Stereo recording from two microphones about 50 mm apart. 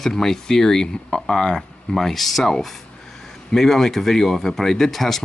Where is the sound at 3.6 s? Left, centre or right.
Centre.